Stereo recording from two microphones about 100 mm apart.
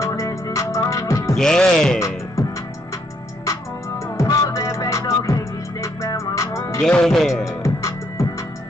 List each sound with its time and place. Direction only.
0.0 s music: 30° left (ahead or behind)
1.3 s speech: 5° left (ahead or behind)
2.0 s music: 30° left (ahead or behind)
4.2 s music: 30° left (ahead or behind)
6.8 s speech: 5° left (ahead or behind)
7.6 s music: 30° left (ahead or behind)